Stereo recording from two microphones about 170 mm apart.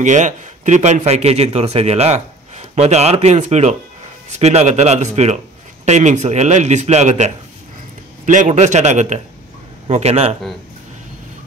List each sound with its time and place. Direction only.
0.0 s a man's voice: 45° right (ahead or behind)